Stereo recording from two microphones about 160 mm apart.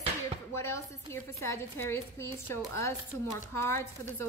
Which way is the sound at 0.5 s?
15° left (ahead or behind).